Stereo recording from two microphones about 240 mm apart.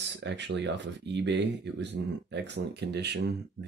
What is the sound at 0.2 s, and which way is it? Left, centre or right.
Speech, right.